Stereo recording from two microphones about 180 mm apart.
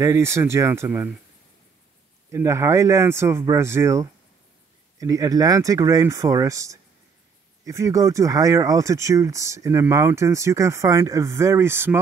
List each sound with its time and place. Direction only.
0.0 s speech: 15° right (ahead or behind)
2.3 s speech: 15° right (ahead or behind)